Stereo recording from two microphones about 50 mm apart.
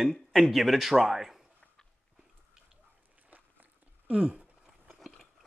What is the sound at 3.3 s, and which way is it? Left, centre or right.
Biting, right.